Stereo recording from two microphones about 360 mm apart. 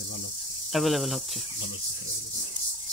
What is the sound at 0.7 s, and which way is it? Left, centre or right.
Speech, centre.